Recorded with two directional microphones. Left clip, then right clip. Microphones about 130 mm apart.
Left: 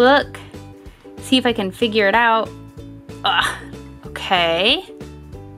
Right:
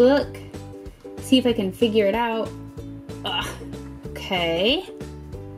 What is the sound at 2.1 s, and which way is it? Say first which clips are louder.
Speech: left 9 dB; 5° right (ahead or behind).